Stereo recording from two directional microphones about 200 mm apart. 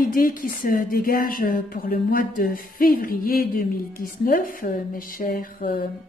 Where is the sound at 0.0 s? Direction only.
45° left (ahead or behind).